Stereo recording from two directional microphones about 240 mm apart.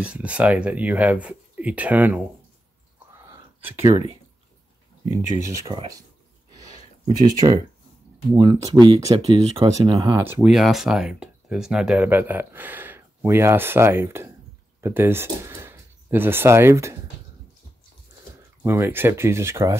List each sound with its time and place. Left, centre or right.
0.0 s speech: centre
3.3 s a sound: centre
5.4 s speech: centre
7.1 s speech: centre
18.6 s speech: centre